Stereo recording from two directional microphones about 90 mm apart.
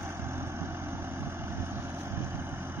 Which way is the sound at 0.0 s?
30° right (ahead or behind).